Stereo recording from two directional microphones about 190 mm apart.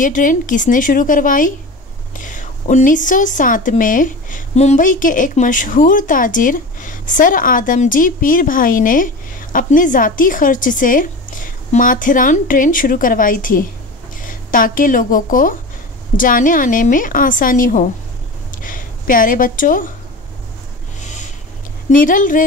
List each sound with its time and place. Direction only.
0.0 s a woman's voice: 45° left (ahead or behind)
18.5 s a sound: 45° left (ahead or behind)
21.0 s vehicle: 40° left (ahead or behind)
21.9 s a woman's voice: 45° left (ahead or behind)